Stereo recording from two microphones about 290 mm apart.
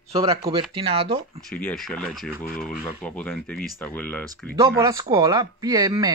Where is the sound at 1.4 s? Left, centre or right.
Centre.